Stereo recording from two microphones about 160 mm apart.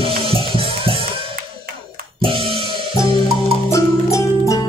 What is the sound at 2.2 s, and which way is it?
Music, 35° right (ahead or behind).